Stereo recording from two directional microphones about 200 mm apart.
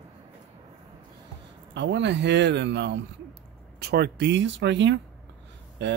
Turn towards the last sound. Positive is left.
turn(degrees=-60)  # may be behind; listen again after turning